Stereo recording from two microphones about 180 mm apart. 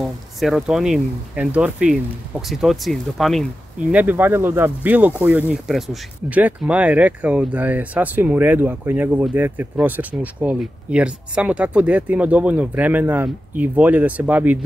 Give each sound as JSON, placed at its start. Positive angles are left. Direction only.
{"t": 0.0, "sound": "speech", "side_deg": 0}
{"t": 3.9, "sound": "speech", "side_deg": -10}